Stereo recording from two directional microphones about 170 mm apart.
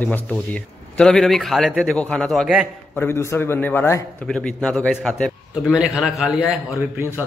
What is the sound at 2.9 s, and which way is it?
A man's voice, 15° left (ahead or behind).